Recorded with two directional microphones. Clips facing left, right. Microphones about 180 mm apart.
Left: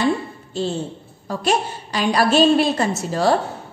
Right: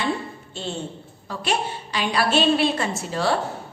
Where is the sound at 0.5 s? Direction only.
40° left (ahead or behind).